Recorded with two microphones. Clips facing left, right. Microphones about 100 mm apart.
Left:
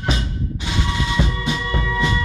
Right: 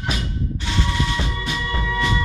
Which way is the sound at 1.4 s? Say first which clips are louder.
Left 2 dB; 20° left (ahead or behind).